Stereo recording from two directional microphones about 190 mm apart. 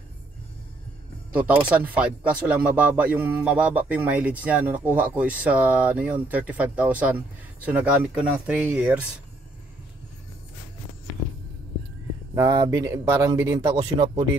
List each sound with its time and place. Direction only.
1.3 s a man's voice: 10° right (ahead or behind)
12.4 s a man's voice: 20° right (ahead or behind)